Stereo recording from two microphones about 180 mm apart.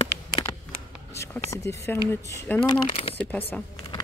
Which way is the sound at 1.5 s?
15° left (ahead or behind).